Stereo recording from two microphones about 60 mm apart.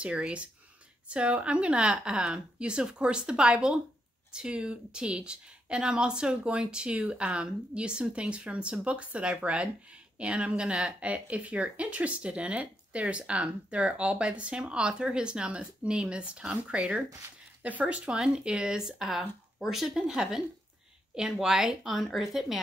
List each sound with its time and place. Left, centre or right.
0.0 s a woman's voice: centre